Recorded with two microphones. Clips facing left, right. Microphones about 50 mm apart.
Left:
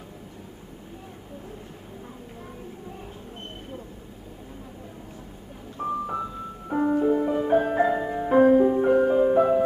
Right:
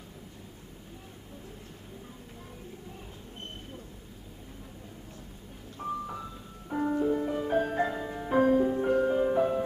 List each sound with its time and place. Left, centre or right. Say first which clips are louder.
5.8 s music: left 7 dB; left